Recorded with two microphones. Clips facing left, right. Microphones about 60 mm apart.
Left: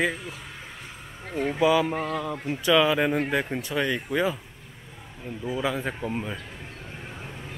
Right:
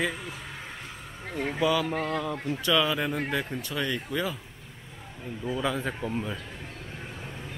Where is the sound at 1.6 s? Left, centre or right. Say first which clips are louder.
Left 4 dB; centre.